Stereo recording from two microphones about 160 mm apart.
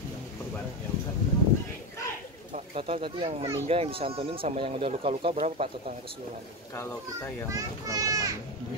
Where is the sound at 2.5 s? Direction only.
35° right (ahead or behind).